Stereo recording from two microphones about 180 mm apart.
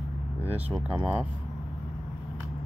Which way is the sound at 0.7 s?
5° right (ahead or behind).